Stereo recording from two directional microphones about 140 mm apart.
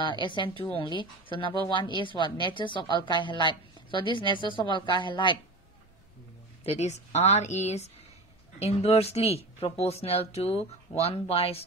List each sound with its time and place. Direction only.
0.0 s a woman's voice: 35° left (ahead or behind)
6.6 s speech: 50° left (ahead or behind)